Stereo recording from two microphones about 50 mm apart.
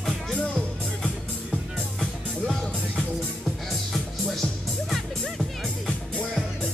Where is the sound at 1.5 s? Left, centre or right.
Centre.